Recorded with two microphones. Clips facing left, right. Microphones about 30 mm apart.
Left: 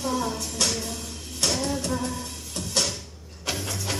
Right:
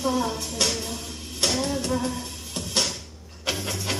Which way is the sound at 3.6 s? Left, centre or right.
Centre.